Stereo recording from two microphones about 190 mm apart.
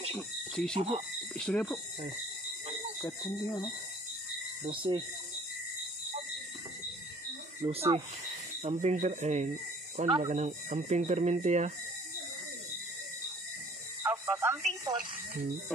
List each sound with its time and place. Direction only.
0.7 s speech: 30° right (ahead or behind)
1.3 s speech: 5° left (ahead or behind)
3.0 s speech: 20° left (ahead or behind)
4.6 s speech: 25° right (ahead or behind)
7.6 s speech: 30° right (ahead or behind)
14.0 s radio: 15° right (ahead or behind)